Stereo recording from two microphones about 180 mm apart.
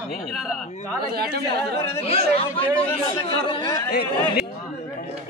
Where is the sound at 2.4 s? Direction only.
30° left (ahead or behind).